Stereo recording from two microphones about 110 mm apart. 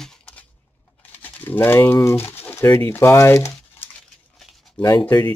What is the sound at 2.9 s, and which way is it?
Speech, 25° left (ahead or behind).